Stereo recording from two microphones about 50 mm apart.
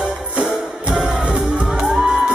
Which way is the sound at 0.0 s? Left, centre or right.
Right.